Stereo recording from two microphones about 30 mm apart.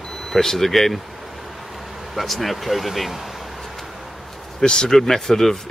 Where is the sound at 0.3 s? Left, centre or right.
Centre.